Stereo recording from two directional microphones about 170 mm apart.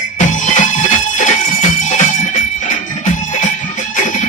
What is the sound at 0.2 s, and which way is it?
Music, 45° left (ahead or behind).